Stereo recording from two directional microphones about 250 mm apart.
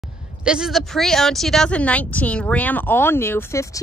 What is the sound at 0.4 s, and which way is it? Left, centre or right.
Speech, centre.